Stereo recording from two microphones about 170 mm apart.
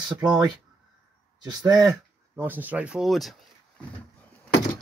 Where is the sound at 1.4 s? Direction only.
25° right (ahead or behind).